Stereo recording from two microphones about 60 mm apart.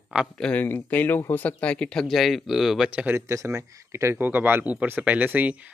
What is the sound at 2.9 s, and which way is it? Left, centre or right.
Speech, right.